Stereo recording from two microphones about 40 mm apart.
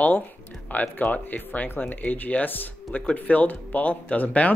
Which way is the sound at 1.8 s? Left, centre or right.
Left.